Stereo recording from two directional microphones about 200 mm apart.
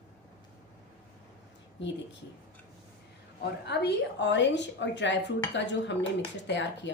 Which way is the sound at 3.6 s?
55° left (ahead or behind).